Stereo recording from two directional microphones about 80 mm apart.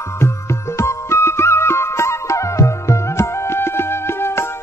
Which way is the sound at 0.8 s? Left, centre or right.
Left.